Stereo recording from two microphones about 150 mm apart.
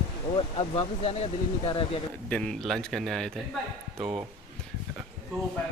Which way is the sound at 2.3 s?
5° left (ahead or behind).